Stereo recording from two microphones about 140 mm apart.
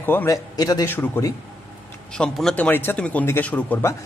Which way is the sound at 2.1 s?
5° left (ahead or behind).